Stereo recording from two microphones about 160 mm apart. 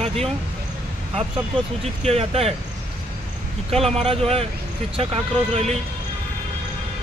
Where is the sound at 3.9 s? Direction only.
40° right (ahead or behind).